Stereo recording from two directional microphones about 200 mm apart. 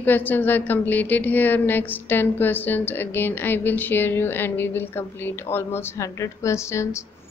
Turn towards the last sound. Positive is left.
turn(degrees=15)  # may be behind; listen again after turning